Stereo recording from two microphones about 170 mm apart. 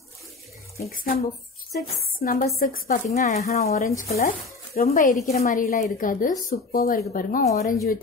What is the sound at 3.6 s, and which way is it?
A woman's voice, 60° left (ahead or behind).